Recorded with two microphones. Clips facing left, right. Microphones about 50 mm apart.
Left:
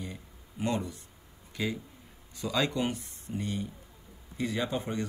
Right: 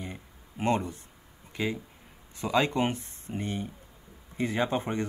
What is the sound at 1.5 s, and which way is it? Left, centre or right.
Speech, right.